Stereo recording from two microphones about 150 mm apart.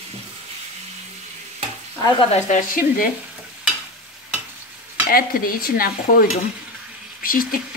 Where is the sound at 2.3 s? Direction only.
60° left (ahead or behind).